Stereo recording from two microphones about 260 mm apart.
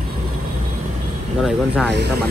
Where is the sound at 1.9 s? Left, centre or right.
Right.